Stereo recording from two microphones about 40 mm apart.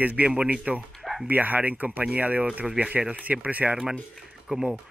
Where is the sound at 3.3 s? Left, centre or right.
Right.